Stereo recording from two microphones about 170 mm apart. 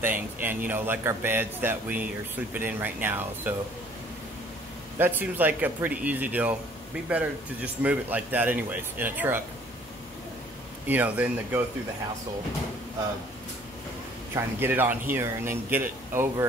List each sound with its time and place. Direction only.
0.0 s speech: 10° right (ahead or behind)
4.9 s speech: 10° right (ahead or behind)
10.9 s speech: 10° right (ahead or behind)
14.3 s speech: 10° right (ahead or behind)